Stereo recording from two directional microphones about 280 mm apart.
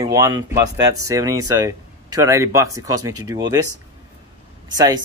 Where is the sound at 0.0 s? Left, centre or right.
Centre.